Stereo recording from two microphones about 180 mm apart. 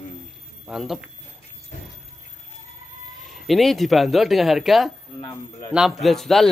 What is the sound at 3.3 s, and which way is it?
Speech, centre (ahead or behind).